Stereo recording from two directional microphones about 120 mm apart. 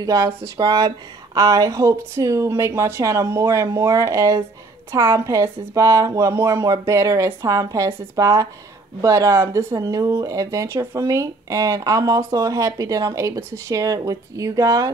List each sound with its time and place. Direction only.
0.0 s speech: 30° right (ahead or behind)